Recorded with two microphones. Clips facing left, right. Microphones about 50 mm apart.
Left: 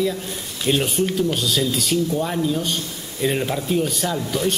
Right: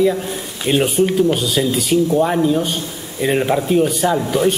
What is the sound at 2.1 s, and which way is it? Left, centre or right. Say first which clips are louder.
Speech: right 7 dB; right.